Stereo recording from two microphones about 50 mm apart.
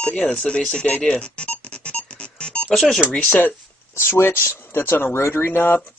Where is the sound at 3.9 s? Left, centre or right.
Left.